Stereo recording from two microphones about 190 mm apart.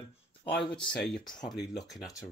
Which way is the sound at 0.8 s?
5° left (ahead or behind).